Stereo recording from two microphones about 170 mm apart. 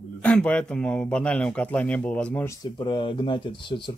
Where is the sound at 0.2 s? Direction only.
5° left (ahead or behind).